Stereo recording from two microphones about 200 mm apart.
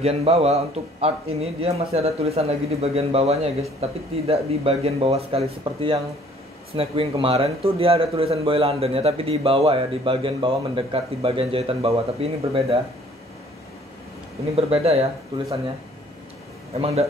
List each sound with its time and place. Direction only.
0.0 s a man's voice: 30° right (ahead or behind)
14.5 s a man's voice: 30° right (ahead or behind)
16.8 s a man's voice: 30° right (ahead or behind)